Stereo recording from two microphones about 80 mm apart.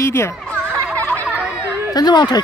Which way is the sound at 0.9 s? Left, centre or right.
Centre.